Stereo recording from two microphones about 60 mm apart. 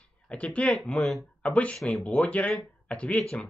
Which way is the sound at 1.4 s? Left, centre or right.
Centre.